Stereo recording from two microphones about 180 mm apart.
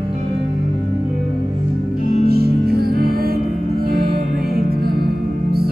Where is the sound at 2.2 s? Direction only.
60° right (ahead or behind).